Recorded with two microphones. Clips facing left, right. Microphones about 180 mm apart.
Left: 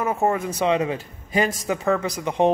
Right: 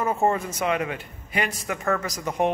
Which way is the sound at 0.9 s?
40° left (ahead or behind).